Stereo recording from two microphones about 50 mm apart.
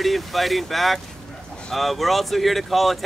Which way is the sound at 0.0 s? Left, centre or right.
Centre.